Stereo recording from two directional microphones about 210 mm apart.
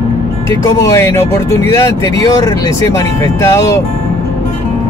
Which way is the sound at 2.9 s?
15° left (ahead or behind).